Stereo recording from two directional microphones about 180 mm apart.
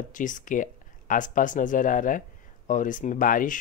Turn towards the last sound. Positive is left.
turn(degrees=50)  # may be behind; listen again after turning